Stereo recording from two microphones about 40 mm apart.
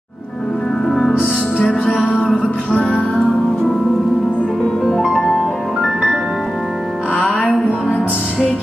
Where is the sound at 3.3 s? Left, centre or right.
Centre.